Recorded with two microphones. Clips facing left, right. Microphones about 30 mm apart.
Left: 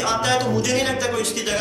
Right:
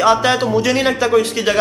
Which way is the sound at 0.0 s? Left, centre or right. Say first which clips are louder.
Right 7 dB; right.